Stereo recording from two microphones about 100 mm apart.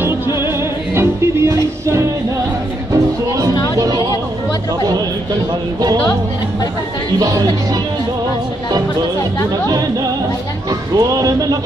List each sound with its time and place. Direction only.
0.4 s music: 25° right (ahead or behind)
7.2 s speech: 35° right (ahead or behind)
9.7 s speech: 40° right (ahead or behind)